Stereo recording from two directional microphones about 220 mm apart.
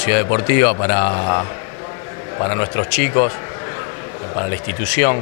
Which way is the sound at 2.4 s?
20° left (ahead or behind).